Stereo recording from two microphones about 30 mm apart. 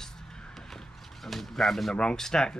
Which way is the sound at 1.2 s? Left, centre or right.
Centre.